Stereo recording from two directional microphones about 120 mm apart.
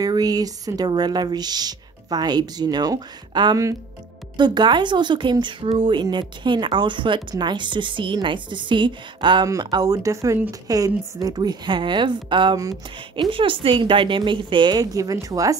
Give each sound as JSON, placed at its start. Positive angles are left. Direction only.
{"t": 0.0, "sound": "a woman's voice", "side_deg": -30}